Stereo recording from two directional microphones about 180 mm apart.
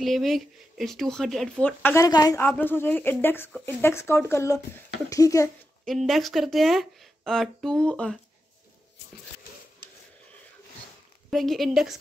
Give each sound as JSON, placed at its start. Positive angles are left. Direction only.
{"t": 0.0, "sound": "speech", "side_deg": 0}
{"t": 2.0, "sound": "a woman's voice", "side_deg": 20}
{"t": 2.4, "sound": "speech", "side_deg": 10}
{"t": 5.9, "sound": "speech", "side_deg": 0}
{"t": 11.2, "sound": "speech", "side_deg": 0}